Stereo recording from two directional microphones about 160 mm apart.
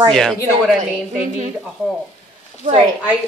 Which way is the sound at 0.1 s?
Centre (ahead or behind).